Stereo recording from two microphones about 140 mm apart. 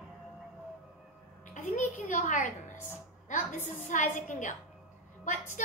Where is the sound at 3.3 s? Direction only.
65° left (ahead or behind).